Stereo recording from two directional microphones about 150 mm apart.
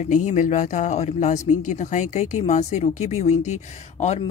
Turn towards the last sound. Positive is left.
turn(degrees=50)  # may be behind; listen again after turning